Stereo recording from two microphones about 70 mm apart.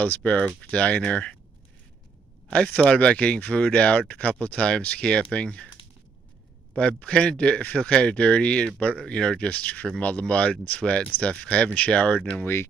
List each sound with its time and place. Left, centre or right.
0.0 s speech: left
2.8 s speech: centre
6.8 s speech: centre